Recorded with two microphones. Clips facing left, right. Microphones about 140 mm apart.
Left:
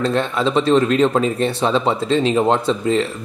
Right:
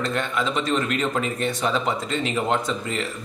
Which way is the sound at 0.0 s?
30° left (ahead or behind).